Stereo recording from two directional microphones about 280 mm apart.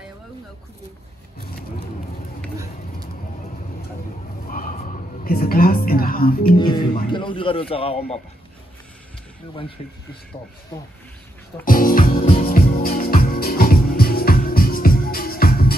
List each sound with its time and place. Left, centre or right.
4.5 s a sound: left
5.2 s a woman's voice: left
6.4 s speech: centre
7.7 s music: centre
11.6 s music: left